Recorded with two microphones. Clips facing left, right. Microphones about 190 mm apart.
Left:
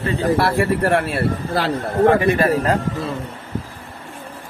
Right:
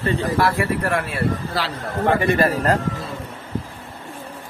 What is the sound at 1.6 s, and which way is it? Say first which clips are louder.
Speech: left 5 dB; 55° left (ahead or behind).